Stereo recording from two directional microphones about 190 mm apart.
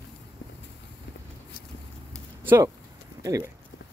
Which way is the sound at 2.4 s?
10° right (ahead or behind).